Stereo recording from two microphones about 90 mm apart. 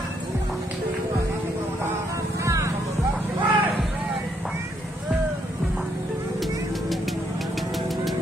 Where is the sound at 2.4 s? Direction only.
35° right (ahead or behind).